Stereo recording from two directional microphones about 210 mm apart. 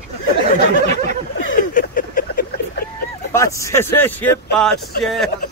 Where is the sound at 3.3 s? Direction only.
15° left (ahead or behind).